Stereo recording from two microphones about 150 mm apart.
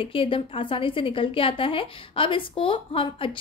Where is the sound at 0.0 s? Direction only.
35° left (ahead or behind).